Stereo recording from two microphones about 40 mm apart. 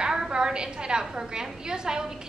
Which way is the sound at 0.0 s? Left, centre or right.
Centre.